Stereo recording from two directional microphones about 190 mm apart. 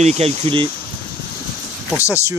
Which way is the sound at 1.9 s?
15° left (ahead or behind).